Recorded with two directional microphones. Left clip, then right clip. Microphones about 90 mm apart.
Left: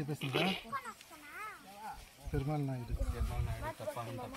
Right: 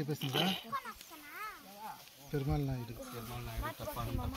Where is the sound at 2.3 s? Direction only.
15° left (ahead or behind).